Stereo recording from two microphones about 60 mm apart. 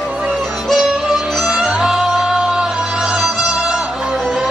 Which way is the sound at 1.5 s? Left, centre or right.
Centre.